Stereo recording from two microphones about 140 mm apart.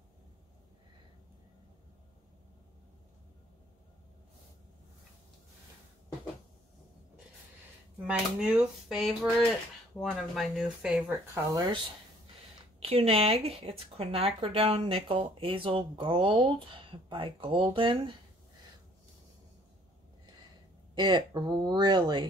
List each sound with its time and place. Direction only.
8.0 s speech: 5° right (ahead or behind)
11.1 s speech: 25° right (ahead or behind)
12.8 s speech: 45° right (ahead or behind)
20.9 s speech: 35° right (ahead or behind)